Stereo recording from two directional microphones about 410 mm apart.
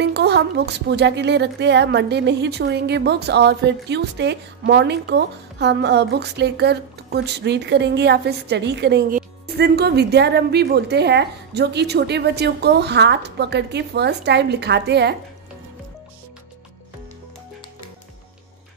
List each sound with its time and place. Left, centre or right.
0.0 s speech: right